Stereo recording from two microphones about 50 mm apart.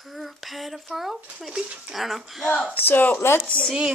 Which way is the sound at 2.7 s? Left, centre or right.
Left.